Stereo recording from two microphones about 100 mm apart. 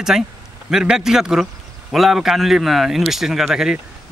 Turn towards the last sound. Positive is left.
turn(degrees=-5)  # may be behind; listen again after turning